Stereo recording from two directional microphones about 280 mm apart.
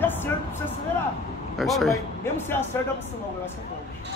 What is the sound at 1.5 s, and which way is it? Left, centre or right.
A man's voice, centre.